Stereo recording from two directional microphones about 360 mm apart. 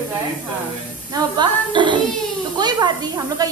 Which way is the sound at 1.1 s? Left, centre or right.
Centre.